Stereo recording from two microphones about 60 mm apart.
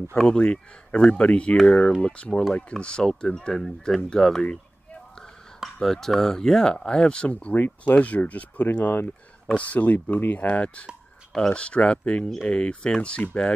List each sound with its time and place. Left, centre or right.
0.1 s speech: centre
5.6 s speech: centre; by 7.5 s left
7.5 s speech: left